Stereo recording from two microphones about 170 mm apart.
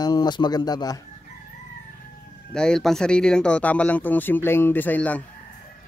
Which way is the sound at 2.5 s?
5° left (ahead or behind).